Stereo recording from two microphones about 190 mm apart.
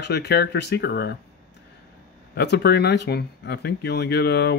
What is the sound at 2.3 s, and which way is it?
Speech, 60° left (ahead or behind).